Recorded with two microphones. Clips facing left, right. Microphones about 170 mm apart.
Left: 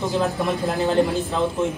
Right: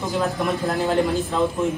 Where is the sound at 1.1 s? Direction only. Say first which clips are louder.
Right 1 dB; centre (ahead or behind).